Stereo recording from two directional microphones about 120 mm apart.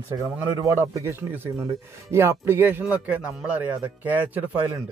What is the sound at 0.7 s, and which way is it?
Speech, 20° right (ahead or behind).